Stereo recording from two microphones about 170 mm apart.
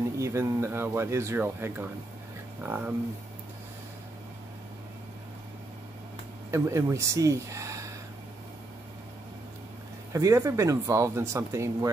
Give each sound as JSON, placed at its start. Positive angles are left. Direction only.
{"t": 0.2, "sound": "speech", "side_deg": -15}
{"t": 6.5, "sound": "speech", "side_deg": -15}
{"t": 10.1, "sound": "speech", "side_deg": -20}